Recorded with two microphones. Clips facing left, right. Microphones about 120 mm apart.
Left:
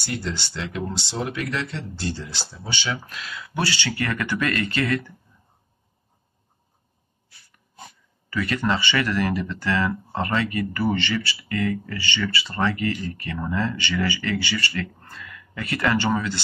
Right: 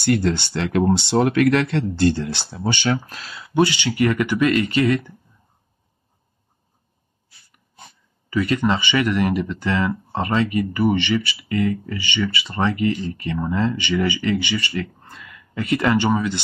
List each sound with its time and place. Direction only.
0.0 s speech: 60° right (ahead or behind)
3.2 s speech: 35° right (ahead or behind)
3.5 s speech: 20° right (ahead or behind)
8.3 s speech: 20° right (ahead or behind)